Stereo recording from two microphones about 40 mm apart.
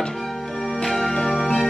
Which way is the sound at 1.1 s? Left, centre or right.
Left.